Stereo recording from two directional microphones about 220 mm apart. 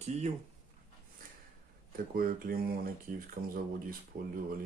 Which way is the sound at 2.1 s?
40° right (ahead or behind).